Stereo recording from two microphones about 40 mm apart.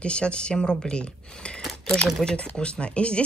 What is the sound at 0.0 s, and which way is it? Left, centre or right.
Speech, left.